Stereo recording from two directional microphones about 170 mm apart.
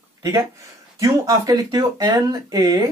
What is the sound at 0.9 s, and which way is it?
Speech, 20° right (ahead or behind).